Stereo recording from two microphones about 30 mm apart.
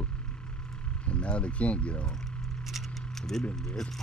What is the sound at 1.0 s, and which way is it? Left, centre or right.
Speech, left.